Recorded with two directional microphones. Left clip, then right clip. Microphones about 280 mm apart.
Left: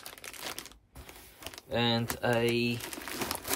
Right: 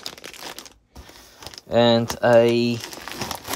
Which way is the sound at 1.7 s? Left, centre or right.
Centre.